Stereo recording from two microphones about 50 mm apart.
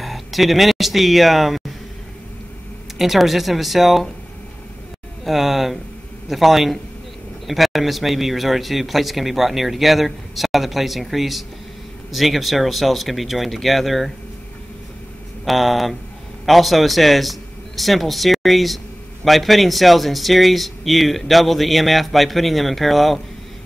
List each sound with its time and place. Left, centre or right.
0.0 s speech: centre
3.0 s speech: centre
5.2 s speech: centre
15.4 s a man's voice: centre